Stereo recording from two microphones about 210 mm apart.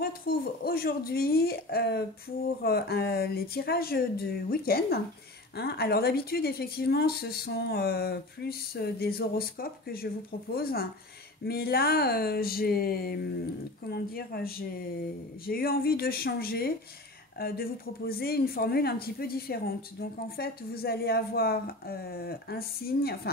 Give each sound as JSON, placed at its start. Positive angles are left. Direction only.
{"t": 0.0, "sound": "speech", "side_deg": 45}